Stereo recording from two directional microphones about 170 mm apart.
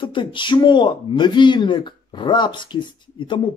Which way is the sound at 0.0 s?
30° left (ahead or behind).